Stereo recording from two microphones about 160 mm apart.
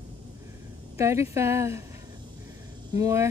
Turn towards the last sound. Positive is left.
turn(degrees=-20)  # may be behind; listen again after turning